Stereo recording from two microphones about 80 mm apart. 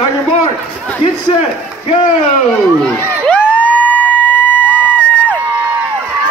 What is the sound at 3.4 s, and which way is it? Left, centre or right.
Vehicle, centre.